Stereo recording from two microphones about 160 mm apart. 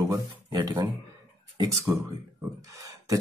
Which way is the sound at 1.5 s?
20° right (ahead or behind).